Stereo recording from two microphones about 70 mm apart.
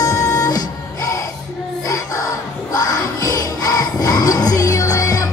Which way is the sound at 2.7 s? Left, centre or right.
Left.